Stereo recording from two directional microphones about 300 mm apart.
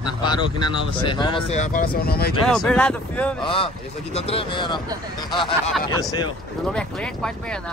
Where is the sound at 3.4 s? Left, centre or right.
Centre.